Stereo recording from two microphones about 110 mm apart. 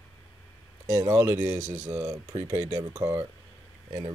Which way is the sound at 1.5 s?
90° right.